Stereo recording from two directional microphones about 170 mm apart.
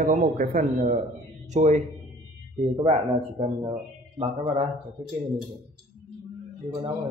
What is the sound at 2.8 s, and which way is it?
Speech, 35° right (ahead or behind).